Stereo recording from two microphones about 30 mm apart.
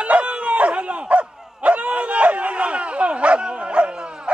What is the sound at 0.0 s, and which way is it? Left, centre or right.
Dog, right.